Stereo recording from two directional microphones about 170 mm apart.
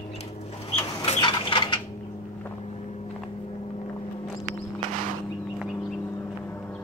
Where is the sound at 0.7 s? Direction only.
35° left (ahead or behind).